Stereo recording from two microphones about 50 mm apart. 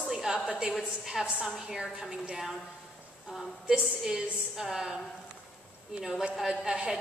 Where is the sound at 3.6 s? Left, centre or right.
Centre.